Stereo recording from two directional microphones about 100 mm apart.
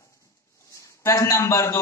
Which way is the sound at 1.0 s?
30° left (ahead or behind).